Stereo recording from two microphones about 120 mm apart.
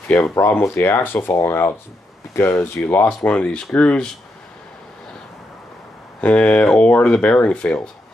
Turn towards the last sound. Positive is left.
turn(degrees=10)  # may be behind; listen again after turning